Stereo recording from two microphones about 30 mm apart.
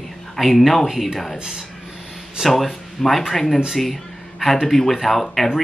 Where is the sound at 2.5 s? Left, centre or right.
Centre.